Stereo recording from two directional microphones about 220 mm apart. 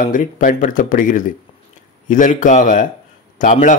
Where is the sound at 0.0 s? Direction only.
35° left (ahead or behind).